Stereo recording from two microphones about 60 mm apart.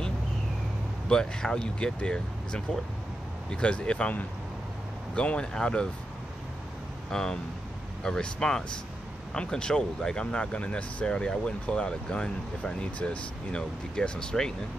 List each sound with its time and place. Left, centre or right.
1.0 s speech: centre
7.1 s speech: centre